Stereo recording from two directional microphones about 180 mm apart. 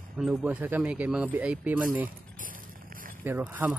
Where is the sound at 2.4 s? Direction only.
50° right (ahead or behind).